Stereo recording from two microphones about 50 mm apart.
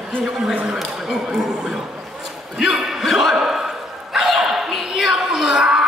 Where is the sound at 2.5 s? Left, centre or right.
Centre.